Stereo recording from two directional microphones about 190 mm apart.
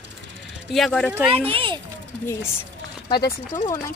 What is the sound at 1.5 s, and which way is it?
Speech, 30° right (ahead or behind).